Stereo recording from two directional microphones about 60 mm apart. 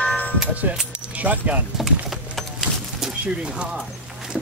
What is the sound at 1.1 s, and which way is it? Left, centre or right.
Speech, right.